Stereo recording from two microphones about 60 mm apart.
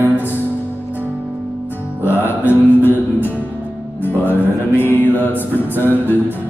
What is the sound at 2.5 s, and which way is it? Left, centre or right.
Mantra, left.